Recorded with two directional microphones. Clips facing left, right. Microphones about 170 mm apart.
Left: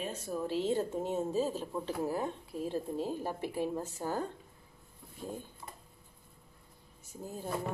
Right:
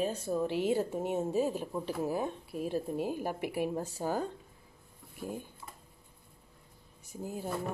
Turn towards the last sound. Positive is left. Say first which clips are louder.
# right 3 dB
turn(degrees=-10)  # may be behind; listen again after turning